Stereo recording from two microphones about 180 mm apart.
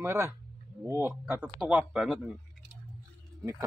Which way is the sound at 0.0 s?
15° right (ahead or behind).